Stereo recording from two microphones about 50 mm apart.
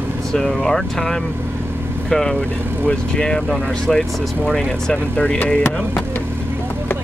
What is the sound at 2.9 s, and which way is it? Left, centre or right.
Speech, left.